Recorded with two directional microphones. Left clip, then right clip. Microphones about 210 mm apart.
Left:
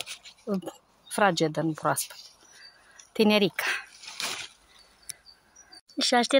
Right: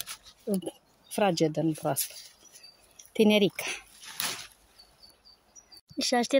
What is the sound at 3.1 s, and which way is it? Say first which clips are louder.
Speech: left 1 dB; 10° right (ahead or behind).